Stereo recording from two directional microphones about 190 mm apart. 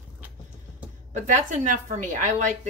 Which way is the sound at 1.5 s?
40° right (ahead or behind).